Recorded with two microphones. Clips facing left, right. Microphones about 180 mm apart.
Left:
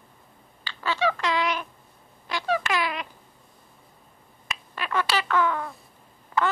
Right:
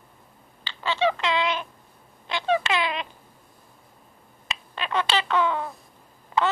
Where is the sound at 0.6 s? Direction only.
25° right (ahead or behind).